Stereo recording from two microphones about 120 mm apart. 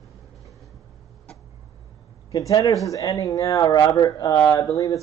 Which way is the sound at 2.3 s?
30° left (ahead or behind).